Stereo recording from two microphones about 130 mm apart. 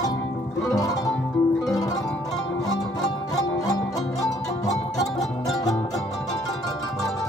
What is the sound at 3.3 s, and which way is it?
Music, 30° left (ahead or behind).